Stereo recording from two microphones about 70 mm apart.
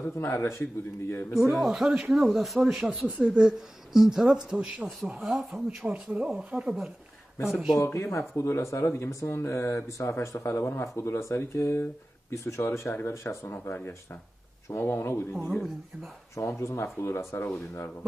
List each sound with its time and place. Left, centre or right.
0.0 s speech: left
1.6 s speech: centre
7.7 s speech: left
15.5 s speech: centre
16.3 s speech: left